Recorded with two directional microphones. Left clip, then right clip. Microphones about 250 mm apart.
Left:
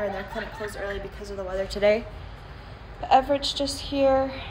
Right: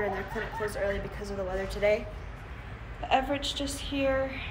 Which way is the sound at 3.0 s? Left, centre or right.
Centre.